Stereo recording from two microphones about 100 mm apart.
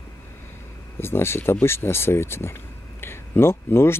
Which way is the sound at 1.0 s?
25° left (ahead or behind).